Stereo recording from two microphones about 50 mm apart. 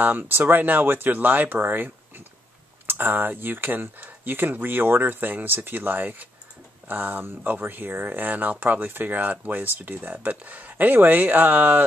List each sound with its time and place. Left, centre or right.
0.0 s speech: right